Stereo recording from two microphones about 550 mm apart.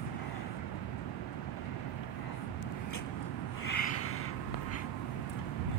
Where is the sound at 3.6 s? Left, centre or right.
Left.